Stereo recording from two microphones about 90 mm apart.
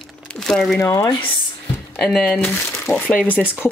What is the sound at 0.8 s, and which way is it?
Speech, 35° left (ahead or behind).